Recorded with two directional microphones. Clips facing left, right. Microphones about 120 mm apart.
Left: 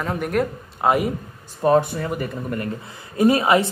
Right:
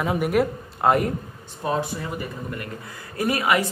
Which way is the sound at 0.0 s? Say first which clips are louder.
Right 1 dB; 5° right (ahead or behind).